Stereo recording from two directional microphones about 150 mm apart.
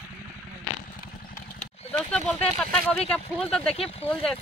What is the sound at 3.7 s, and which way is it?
Speech, 40° left (ahead or behind).